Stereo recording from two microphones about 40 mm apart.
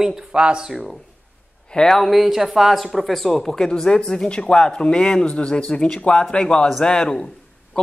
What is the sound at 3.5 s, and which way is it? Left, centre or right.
Speech, centre.